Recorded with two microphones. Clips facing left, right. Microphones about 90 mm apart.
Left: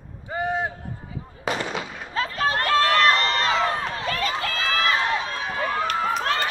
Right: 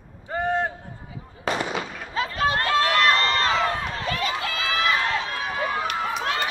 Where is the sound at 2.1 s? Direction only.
35° left (ahead or behind).